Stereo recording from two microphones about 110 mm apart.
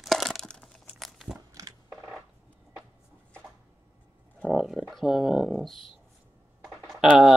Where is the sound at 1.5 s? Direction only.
35° right (ahead or behind).